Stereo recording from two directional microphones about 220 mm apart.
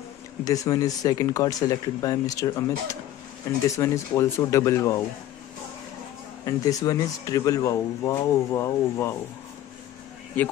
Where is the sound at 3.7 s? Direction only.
15° left (ahead or behind).